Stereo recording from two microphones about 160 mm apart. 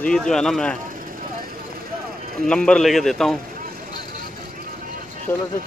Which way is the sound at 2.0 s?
70° right (ahead or behind).